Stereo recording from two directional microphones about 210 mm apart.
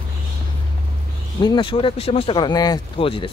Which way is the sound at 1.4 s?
20° left (ahead or behind).